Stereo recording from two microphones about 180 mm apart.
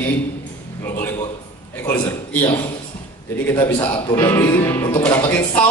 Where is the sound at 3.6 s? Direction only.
10° left (ahead or behind).